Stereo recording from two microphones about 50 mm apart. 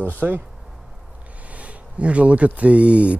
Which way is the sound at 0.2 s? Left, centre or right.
Right.